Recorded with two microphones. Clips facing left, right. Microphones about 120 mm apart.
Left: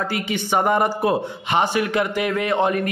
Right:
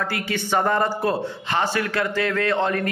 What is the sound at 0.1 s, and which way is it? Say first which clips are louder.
A man's voice: left 1 dB; 15° left (ahead or behind).